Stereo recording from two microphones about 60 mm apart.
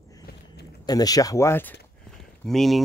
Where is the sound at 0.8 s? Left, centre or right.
Left.